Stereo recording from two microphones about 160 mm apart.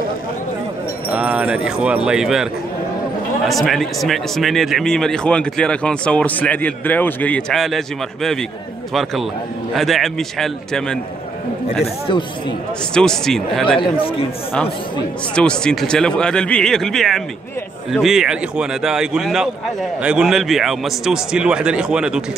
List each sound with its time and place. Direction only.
1.1 s speech: 10° right (ahead or behind)
3.4 s speech: centre (ahead or behind)
9.8 s speech: centre (ahead or behind)
11.8 s speech: 30° left (ahead or behind)
12.9 s speech: 5° left (ahead or behind)
13.7 s speech: 35° left (ahead or behind)
15.3 s speech: 5° left (ahead or behind)